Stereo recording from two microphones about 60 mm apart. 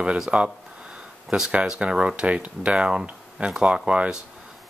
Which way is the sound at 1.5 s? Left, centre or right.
Centre.